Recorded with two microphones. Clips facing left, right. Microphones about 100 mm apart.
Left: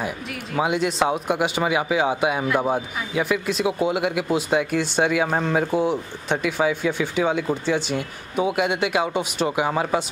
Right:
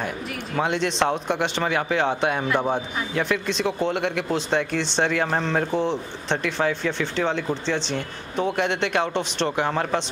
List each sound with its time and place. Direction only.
0.6 s speech: 5° left (ahead or behind)